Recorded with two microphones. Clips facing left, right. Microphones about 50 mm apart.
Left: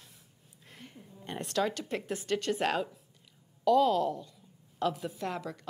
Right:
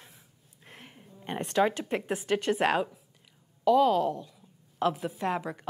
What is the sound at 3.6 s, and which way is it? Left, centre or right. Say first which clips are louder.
A woman's voice: right 2 dB; centre.